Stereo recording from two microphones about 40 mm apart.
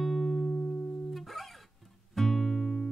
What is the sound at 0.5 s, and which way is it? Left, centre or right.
Music, left.